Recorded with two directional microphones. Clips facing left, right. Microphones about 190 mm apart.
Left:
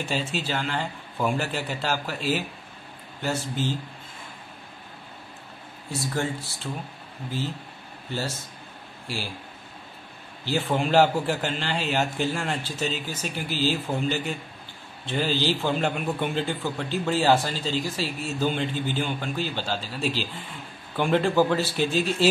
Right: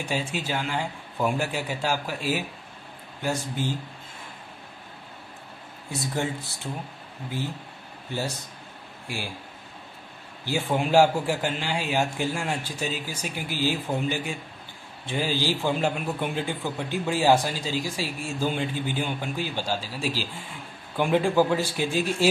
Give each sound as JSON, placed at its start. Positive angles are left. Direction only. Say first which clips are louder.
{"t": 0.0, "sound": "a man's voice", "louder": "left 1 dB", "side_deg": -15}
{"t": 6.1, "sound": "a man's voice", "louder": "even", "side_deg": -20}
{"t": 10.4, "sound": "a man's voice", "louder": "left 1 dB", "side_deg": -10}